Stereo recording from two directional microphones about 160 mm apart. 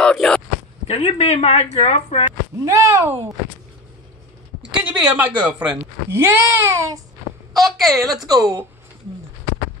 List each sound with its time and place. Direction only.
0.0 s a sound: 5° left (ahead or behind)
0.8 s speech: 40° left (ahead or behind)
2.6 s speech: 20° right (ahead or behind)
4.7 s speech: 5° right (ahead or behind)
7.5 s a woman's voice: centre (ahead or behind)
8.3 s speech: 20° right (ahead or behind)